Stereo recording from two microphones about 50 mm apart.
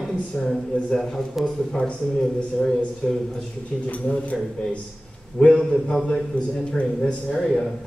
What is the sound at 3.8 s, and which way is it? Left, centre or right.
Speech, left.